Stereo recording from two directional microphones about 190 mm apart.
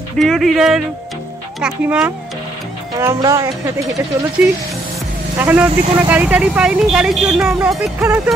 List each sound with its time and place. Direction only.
0.2 s speech: centre (ahead or behind); by 3.4 s 15° right (ahead or behind)
5.4 s speech: 10° right (ahead or behind)